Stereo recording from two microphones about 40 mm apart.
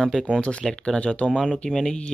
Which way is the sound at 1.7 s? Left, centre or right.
Centre.